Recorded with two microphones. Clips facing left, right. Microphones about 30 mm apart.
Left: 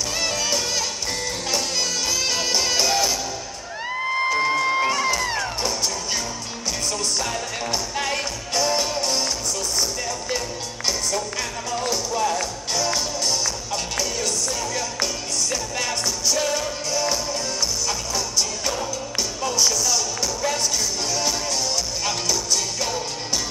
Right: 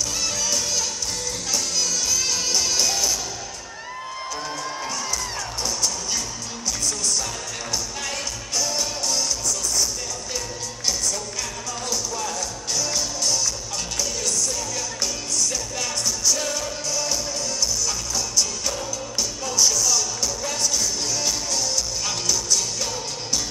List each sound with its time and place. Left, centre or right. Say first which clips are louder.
0.2 s music: left 3 dB; left
4.0 s music: left 11 dB; left
7.7 s music: left 4 dB; left
10.9 s music: left 2 dB; centre
15.5 s music: left 2 dB; centre
19.4 s music: even; centre
21.1 s music: left 2 dB; centre